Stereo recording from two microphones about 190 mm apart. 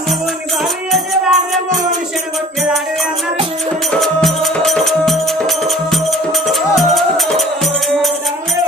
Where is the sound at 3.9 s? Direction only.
Centre (ahead or behind).